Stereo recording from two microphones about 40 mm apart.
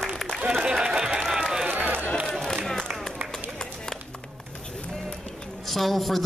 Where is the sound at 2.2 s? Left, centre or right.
Centre.